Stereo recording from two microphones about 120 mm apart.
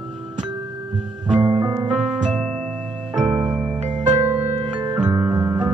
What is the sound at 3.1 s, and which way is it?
Music, 5° right (ahead or behind).